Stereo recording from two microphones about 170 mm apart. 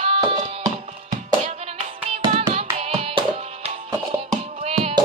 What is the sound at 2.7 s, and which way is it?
Music, 35° right (ahead or behind).